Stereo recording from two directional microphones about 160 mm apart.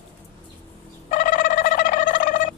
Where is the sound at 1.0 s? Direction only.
55° left (ahead or behind).